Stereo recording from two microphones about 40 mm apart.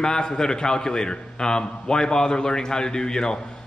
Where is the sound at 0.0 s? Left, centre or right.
Centre.